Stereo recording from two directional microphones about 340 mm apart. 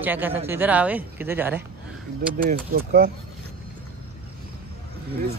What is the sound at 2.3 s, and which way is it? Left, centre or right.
Speech, right.